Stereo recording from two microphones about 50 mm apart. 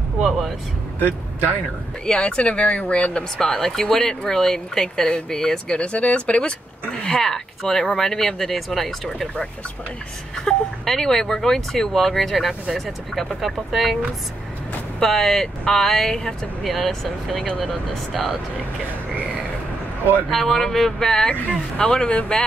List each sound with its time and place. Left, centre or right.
2.0 s speech: centre
3.3 s speech: centre
5.8 s speech: left; by 13.9 s centre
15.0 s speech: centre
20.2 s speech: centre